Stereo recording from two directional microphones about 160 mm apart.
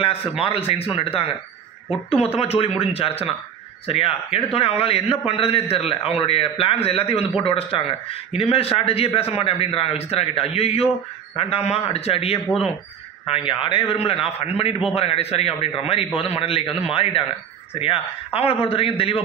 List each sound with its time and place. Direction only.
0.0 s a man's voice: 35° left (ahead or behind)